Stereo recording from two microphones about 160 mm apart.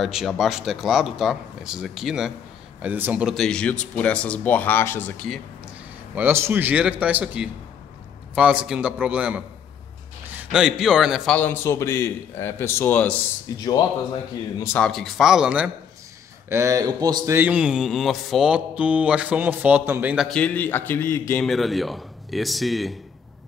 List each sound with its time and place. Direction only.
0.0 s speech: centre (ahead or behind)
6.1 s speech: 15° right (ahead or behind)
11.3 s speech: 15° left (ahead or behind)
13.6 s speech: 25° left (ahead or behind)
14.9 s speech: centre (ahead or behind)
16.4 s speech: 20° right (ahead or behind)
17.4 s speech: 10° right (ahead or behind)
20.2 s speech: 5° left (ahead or behind)
21.4 s speech: centre (ahead or behind)